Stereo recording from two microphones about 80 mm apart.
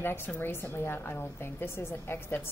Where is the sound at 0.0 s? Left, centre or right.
Left.